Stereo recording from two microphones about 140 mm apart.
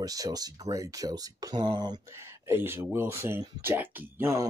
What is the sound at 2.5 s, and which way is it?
Speech, 15° right (ahead or behind).